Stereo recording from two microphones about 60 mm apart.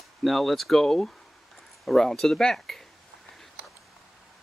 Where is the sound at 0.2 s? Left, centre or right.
Centre.